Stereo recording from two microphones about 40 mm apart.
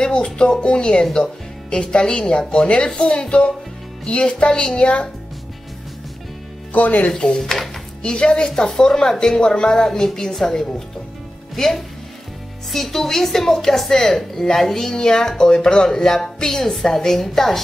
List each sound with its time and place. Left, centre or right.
0.0 s speech: left
6.7 s speech: left
7.1 s speech: centre
7.4 s speech: centre
8.0 s a woman's voice: left